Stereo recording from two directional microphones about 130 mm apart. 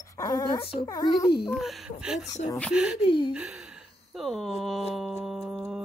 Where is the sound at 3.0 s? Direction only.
40° left (ahead or behind).